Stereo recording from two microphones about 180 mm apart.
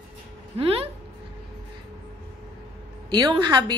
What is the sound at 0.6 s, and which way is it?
Speech, 30° right (ahead or behind).